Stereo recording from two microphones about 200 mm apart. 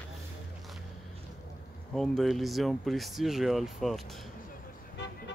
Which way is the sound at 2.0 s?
Centre (ahead or behind).